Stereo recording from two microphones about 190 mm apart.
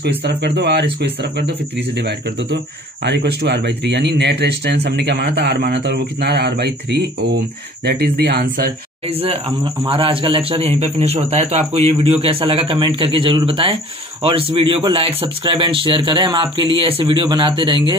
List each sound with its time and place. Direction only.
0.2 s speech: 60° right (ahead or behind)
9.0 s a man's voice: 30° right (ahead or behind)